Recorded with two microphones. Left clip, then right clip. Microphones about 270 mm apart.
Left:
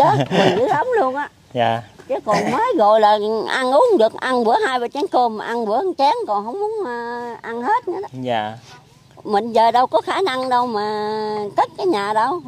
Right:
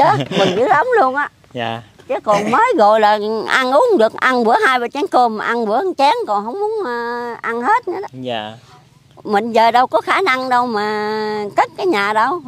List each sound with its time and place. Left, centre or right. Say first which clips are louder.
0.2 s speech: even; centre
0.6 s speech: right 4 dB; right
1.5 s speech: left 5 dB; centre
2.6 s speech: right 1 dB; right
8.2 s speech: left 2 dB; centre
9.3 s speech: right 2 dB; right